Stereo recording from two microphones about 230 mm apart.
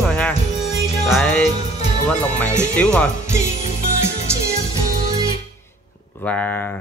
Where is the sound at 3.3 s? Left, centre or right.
Left.